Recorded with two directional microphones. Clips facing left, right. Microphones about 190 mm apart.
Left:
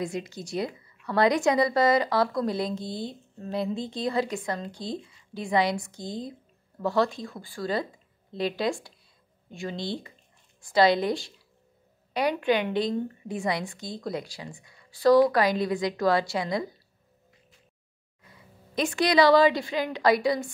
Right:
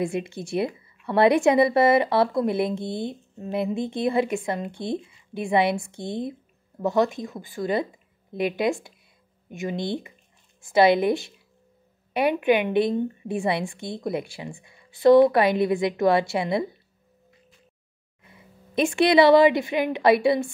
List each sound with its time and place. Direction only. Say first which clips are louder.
0.0 s a woman's voice: right 5 dB; 25° right (ahead or behind)
18.2 s speech: right 2 dB; 25° right (ahead or behind)